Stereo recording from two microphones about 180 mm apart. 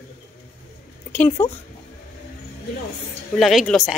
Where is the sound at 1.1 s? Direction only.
10° left (ahead or behind).